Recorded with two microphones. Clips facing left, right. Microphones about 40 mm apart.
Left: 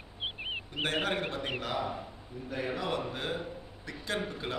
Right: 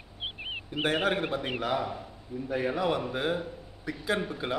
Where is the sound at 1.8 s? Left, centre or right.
Centre.